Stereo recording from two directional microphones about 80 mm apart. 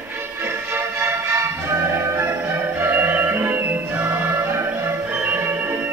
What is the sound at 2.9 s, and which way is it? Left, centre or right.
Music, right.